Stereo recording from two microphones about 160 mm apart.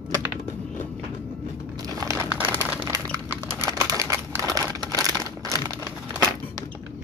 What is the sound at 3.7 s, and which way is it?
Crumpling, 20° right (ahead or behind).